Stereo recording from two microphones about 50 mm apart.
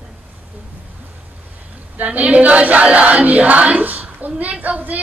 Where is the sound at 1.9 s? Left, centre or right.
Right.